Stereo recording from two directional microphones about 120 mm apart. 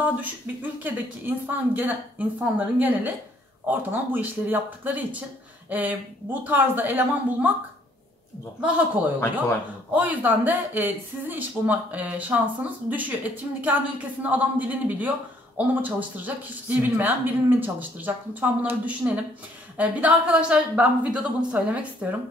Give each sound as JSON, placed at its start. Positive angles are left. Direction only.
{"t": 0.0, "sound": "a woman's voice", "side_deg": -15}
{"t": 8.5, "sound": "a woman's voice", "side_deg": -10}